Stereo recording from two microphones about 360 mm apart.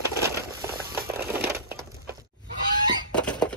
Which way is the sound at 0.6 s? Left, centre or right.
Centre.